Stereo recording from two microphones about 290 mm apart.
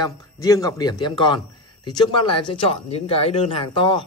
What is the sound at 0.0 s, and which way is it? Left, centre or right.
A man's voice, centre.